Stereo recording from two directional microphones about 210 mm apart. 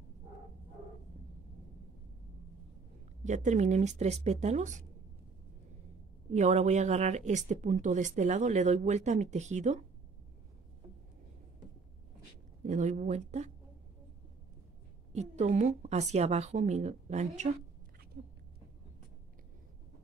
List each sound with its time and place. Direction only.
3.3 s speech: 35° right (ahead or behind)
6.3 s speech: 35° right (ahead or behind)
12.6 s speech: 35° right (ahead or behind)
15.1 s speech: 35° right (ahead or behind)